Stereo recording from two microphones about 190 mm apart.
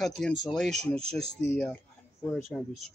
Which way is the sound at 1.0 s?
30° right (ahead or behind).